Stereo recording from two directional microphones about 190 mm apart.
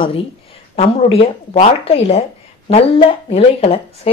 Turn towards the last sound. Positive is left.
turn(degrees=30)  # may be behind; listen again after turning